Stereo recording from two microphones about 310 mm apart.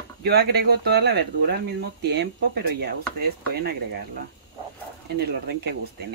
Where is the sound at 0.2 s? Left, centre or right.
Right.